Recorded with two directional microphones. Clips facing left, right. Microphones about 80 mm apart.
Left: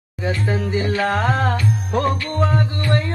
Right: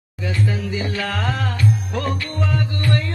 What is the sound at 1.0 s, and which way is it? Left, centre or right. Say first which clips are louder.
Music: left 5 dB; left.